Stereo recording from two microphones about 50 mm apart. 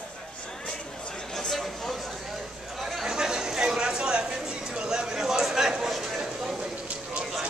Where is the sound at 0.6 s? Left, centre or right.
Centre.